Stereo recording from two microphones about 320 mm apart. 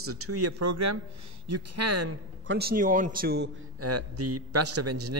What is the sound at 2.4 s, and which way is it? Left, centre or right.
A man's voice, right.